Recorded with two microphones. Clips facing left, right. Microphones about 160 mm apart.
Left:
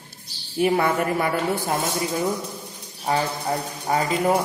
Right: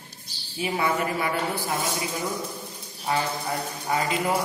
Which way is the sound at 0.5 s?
60° left (ahead or behind).